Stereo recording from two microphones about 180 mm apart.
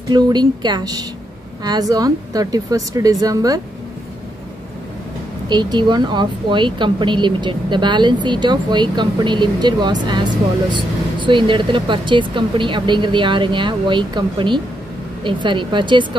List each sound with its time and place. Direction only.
0.1 s speech: 25° right (ahead or behind)
5.5 s speech: 25° right (ahead or behind)